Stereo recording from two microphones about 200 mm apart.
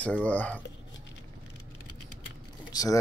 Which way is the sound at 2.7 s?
20° left (ahead or behind).